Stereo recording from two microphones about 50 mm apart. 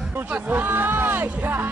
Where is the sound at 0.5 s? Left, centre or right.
Right.